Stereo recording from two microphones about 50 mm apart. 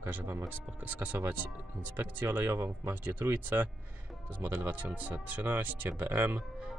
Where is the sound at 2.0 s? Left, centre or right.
Right.